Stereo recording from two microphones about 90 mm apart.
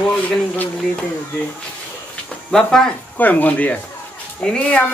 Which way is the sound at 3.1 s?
20° left (ahead or behind).